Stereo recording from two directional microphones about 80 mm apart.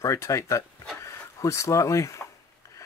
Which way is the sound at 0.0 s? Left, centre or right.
Left.